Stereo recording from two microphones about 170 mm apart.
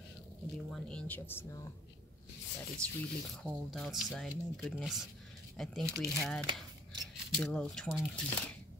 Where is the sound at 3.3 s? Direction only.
5° left (ahead or behind).